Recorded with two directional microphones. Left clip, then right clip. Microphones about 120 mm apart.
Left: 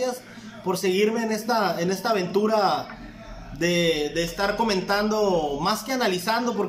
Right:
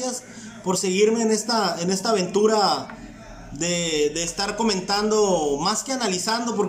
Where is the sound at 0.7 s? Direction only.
5° right (ahead or behind).